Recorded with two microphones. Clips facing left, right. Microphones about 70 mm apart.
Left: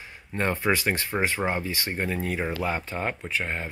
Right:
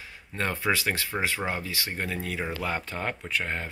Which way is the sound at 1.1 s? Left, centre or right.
Centre.